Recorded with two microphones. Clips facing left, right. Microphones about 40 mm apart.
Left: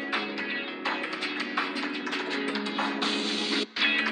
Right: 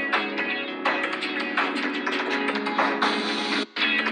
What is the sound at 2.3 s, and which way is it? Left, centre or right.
Music, centre.